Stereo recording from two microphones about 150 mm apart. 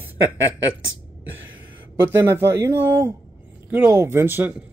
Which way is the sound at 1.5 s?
15° right (ahead or behind).